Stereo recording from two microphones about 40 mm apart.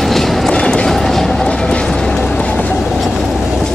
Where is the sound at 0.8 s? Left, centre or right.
Centre.